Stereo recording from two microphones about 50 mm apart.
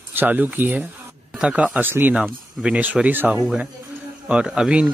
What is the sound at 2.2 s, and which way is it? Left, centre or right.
Speech, right.